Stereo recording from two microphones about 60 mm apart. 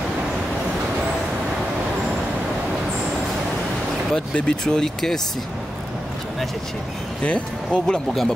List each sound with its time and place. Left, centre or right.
4.1 s speech: centre
7.2 s speech: left
7.8 s speech: centre